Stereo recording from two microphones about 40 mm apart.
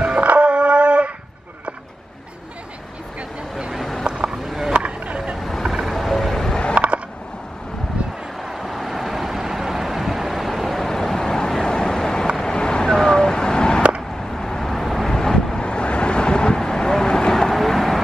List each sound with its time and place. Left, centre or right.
0.0 s a sound: right
4.1 s a sound: right
5.4 s vehicle: centre
6.7 s mechanisms: right
8.4 s vehicle: centre
15.1 s vehicle: centre
15.6 s vehicle: left; by 18.0 s centre